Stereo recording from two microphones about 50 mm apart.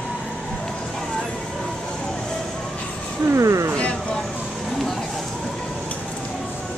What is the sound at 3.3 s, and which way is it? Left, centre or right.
Speech, right.